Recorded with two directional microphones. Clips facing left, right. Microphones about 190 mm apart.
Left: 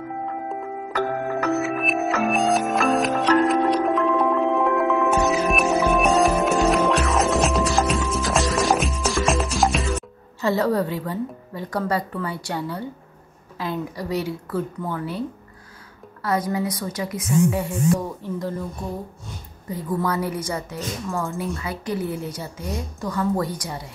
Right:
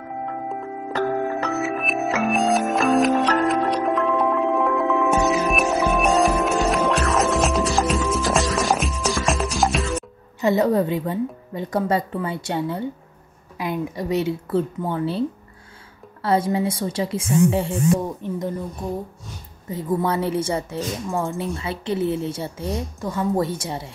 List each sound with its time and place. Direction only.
1.0 s music: centre (ahead or behind)
10.4 s a woman's voice: 20° right (ahead or behind)
19.7 s a woman's voice: 25° right (ahead or behind)